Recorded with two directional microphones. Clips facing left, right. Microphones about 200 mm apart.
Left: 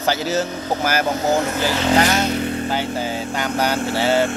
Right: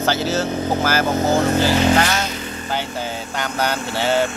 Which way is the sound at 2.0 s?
10° left (ahead or behind).